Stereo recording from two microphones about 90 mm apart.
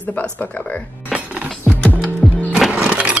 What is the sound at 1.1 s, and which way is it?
Music, centre (ahead or behind).